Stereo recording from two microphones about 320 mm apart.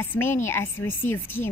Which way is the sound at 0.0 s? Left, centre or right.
Centre.